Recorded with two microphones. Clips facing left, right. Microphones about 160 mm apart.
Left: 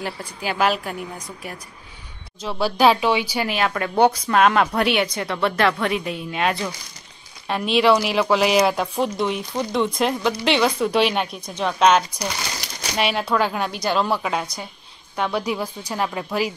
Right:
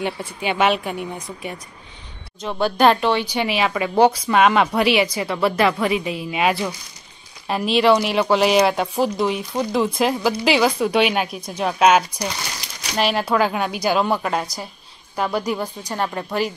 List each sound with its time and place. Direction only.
0.4 s speech: centre (ahead or behind)
3.4 s speech: centre (ahead or behind)